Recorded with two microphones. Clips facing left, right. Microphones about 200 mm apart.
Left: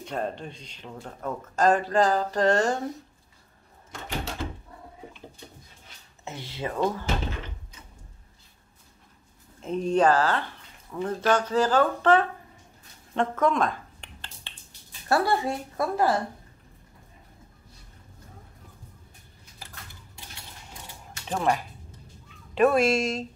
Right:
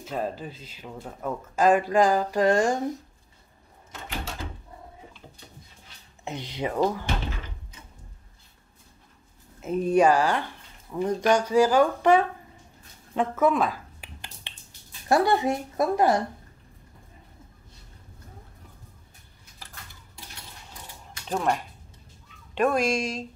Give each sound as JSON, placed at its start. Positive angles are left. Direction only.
{"t": 0.0, "sound": "speech", "side_deg": -5}
{"t": 6.2, "sound": "speech", "side_deg": -15}
{"t": 9.6, "sound": "speech", "side_deg": -5}
{"t": 13.1, "sound": "a sound", "side_deg": -5}
{"t": 15.0, "sound": "speech", "side_deg": -15}
{"t": 21.3, "sound": "speech", "side_deg": 0}